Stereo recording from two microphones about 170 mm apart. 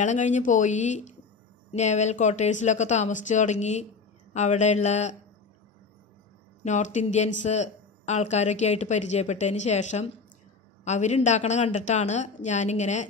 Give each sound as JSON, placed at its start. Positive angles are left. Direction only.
{"t": 0.0, "sound": "speech", "side_deg": 45}
{"t": 6.6, "sound": "speech", "side_deg": 45}